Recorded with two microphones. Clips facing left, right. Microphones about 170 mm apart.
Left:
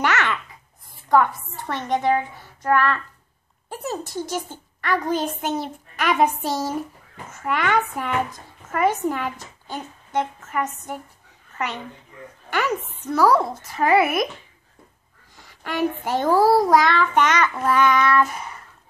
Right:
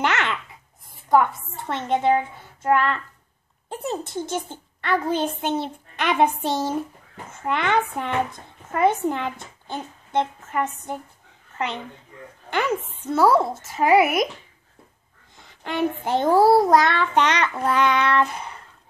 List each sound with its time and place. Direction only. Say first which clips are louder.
0.0 s babbling: left 1 dB; 25° right (ahead or behind)
1.0 s speech: even; 20° right (ahead or behind)
11.5 s a sound: right 1 dB; 25° right (ahead or behind)
12.4 s speech: even; 25° right (ahead or behind)
15.3 s speech: even; 25° right (ahead or behind)